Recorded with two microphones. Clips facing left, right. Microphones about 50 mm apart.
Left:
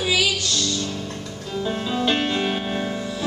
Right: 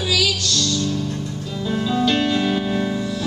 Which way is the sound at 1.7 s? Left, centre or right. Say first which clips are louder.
Right 3 dB; left.